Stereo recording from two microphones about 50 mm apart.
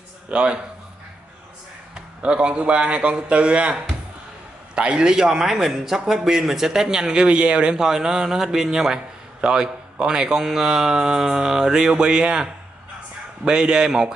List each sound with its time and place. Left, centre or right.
0.3 s speech: right
2.2 s a man's voice: right
13.5 s a man's voice: centre